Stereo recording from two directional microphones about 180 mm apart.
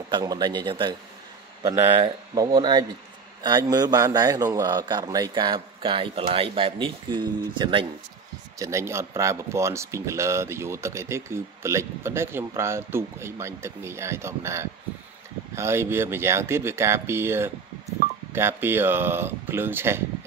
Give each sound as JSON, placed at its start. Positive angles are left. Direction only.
{"t": 0.1, "sound": "a man's voice", "side_deg": -25}